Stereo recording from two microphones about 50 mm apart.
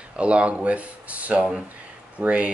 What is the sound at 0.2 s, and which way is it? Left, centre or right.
Speech, right.